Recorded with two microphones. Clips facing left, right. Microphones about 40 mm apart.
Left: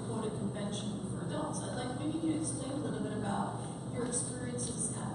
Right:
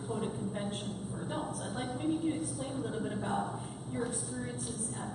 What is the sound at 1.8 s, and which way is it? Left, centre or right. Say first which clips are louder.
A woman's voice: right 3 dB; centre.